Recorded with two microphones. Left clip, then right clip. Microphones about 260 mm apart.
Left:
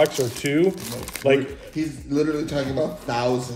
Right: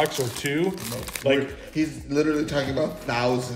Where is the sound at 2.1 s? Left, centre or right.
Right.